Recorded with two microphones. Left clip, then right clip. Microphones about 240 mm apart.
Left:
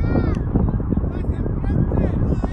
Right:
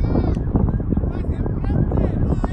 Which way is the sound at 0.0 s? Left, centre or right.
Centre.